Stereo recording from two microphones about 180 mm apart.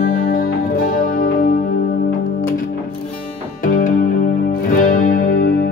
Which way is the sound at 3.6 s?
45° left (ahead or behind).